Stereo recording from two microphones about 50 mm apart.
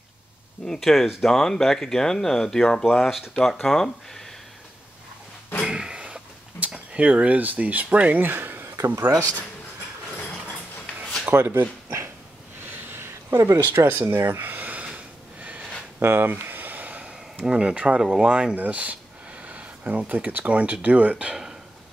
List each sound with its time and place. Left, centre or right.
0.7 s speech: centre
2.8 s speech: centre
5.7 s a sound: centre; by 9.3 s right
11.3 s speech: right
12.6 s a sound: right
13.7 s speech: right
14.1 s a sound: right
16.0 s speech: right; by 18.5 s centre
18.5 s speech: right